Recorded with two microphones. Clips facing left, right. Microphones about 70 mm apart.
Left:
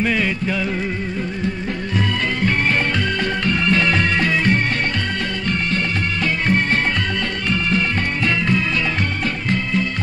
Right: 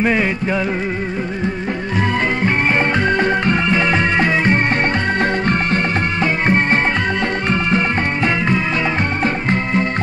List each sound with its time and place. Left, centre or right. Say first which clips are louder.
0.0 s music: right 3 dB; right
3.2 s music: right 5 dB; right
6.4 s music: right 3 dB; right